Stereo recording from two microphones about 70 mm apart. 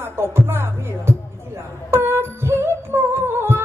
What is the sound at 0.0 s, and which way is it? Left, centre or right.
Music, right.